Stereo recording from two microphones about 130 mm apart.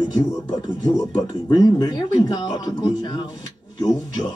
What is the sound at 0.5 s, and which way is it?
Speech, 35° left (ahead or behind).